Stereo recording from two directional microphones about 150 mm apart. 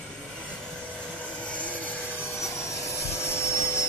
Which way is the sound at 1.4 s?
10° left (ahead or behind).